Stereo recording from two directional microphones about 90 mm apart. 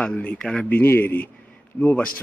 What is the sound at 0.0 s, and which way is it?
A man's voice, 15° left (ahead or behind).